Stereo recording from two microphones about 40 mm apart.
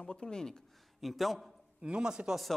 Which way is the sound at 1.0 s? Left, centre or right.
Centre.